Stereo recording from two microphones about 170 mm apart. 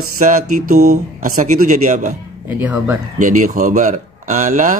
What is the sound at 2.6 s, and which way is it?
Speech, 10° right (ahead or behind).